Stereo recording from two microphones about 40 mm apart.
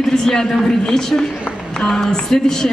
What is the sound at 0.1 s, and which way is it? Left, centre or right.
A woman's voice, centre.